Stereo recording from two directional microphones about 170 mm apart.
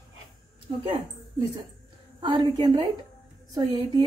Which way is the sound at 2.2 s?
25° right (ahead or behind).